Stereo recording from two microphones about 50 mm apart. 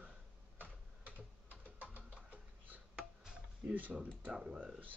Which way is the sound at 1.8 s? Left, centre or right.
Right.